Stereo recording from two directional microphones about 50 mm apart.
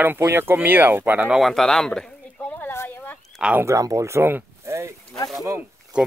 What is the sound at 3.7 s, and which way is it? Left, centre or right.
Speech, right.